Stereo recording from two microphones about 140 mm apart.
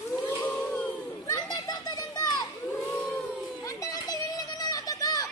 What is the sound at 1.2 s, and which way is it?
Children playing, 25° left (ahead or behind).